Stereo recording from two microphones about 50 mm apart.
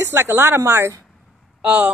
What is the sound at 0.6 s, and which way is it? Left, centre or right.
Speech, right.